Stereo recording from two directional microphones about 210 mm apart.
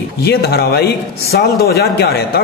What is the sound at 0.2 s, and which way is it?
A man's voice, 50° left (ahead or behind).